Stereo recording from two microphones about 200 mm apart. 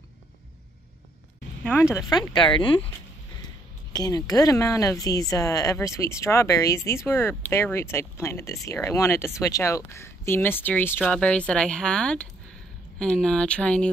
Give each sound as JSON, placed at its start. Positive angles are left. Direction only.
{"t": 1.6, "sound": "speech", "side_deg": 10}
{"t": 3.9, "sound": "a woman's voice", "side_deg": 20}